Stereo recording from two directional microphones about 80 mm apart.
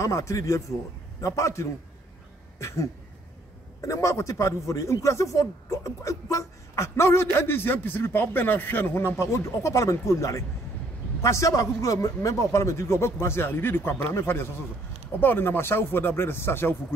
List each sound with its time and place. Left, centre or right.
0.0 s a man's voice: left
3.8 s a man's voice: left